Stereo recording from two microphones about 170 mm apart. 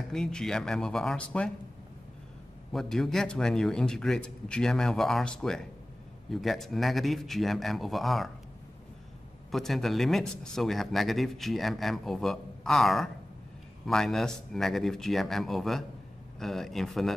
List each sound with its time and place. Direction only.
0.1 s speech: 5° left (ahead or behind)
2.7 s speech: centre (ahead or behind)
9.5 s speech: centre (ahead or behind)